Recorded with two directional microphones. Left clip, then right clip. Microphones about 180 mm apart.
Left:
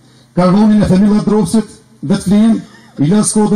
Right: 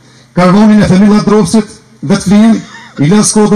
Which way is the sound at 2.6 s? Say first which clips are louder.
Right 10 dB; 20° right (ahead or behind).